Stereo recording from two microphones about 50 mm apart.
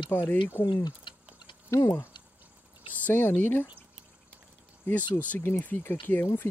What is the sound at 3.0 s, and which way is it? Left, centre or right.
Speech, left.